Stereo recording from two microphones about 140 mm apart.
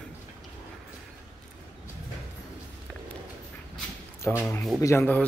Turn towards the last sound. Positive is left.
turn(degrees=15)  # may be behind; listen again after turning